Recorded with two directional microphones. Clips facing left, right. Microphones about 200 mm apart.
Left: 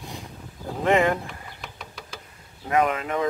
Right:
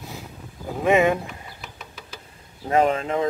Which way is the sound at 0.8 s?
15° right (ahead or behind).